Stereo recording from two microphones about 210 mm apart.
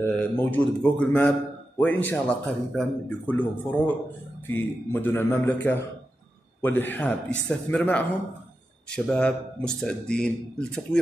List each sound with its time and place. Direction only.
0.0 s a man's voice: 10° left (ahead or behind)